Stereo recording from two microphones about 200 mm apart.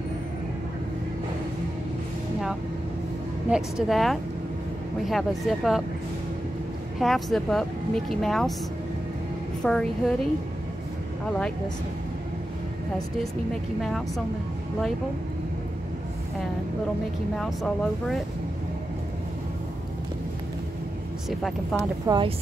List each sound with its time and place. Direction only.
3.4 s speech: 5° right (ahead or behind)
7.0 s speech: centre (ahead or behind)
9.6 s speech: 5° left (ahead or behind)
13.7 s speech: centre (ahead or behind)
17.4 s speech: centre (ahead or behind)
21.3 s speech: centre (ahead or behind)
22.0 s speech: 20° right (ahead or behind)